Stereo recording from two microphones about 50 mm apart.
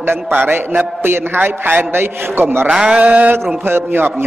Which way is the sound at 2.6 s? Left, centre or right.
Right.